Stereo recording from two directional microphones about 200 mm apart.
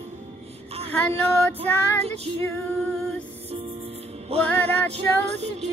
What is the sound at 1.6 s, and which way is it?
Child singing, 30° right (ahead or behind).